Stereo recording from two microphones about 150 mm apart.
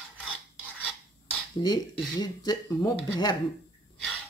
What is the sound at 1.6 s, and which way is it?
Speech, 30° left (ahead or behind).